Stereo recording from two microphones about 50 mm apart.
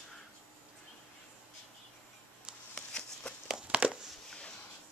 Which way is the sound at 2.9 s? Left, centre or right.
Centre.